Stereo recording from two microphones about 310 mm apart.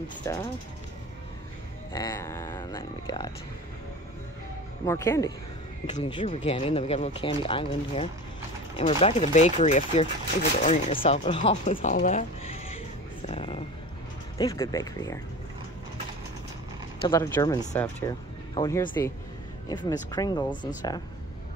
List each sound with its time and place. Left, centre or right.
0.2 s speech: centre
1.9 s speech: centre
4.8 s speech: centre
13.3 s a sound: centre
14.4 s speech: centre
17.0 s speech: centre